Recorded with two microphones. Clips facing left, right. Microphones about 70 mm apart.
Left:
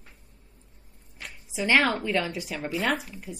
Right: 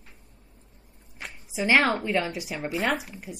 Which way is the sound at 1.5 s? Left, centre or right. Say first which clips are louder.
Right 1 dB; centre.